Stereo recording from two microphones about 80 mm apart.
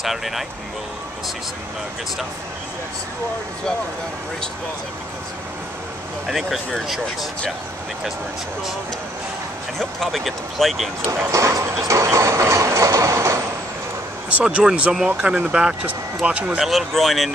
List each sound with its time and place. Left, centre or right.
0.0 s speech: centre
6.2 s speech: centre
9.8 s speech: centre
11.3 s train: right
14.3 s speech: centre
16.6 s speech: centre